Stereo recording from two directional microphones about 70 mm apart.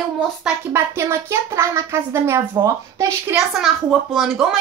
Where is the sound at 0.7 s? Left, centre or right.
Right.